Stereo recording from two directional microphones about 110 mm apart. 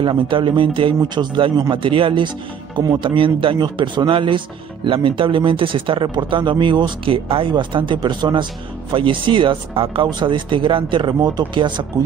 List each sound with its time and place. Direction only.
0.0 s speech: 50° right (ahead or behind)
3.0 s speech: 50° right (ahead or behind)